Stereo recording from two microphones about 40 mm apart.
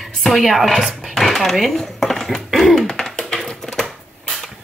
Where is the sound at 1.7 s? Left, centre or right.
Centre.